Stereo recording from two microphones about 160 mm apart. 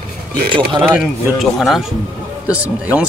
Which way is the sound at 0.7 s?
10° right (ahead or behind).